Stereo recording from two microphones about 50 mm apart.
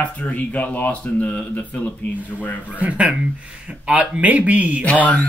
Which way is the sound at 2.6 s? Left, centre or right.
Right.